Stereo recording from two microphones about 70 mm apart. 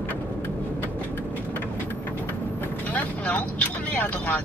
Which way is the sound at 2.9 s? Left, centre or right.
Left.